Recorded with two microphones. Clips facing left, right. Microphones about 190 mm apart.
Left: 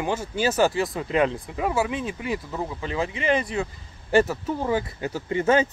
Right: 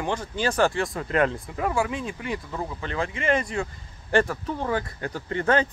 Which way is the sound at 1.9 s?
20° left (ahead or behind).